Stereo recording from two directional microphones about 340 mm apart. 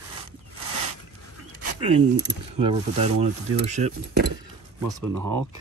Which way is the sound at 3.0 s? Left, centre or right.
Centre.